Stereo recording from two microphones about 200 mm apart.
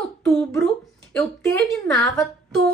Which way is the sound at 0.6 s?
5° left (ahead or behind).